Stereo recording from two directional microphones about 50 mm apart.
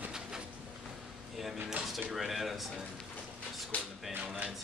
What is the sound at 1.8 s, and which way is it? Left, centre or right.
Speech, centre.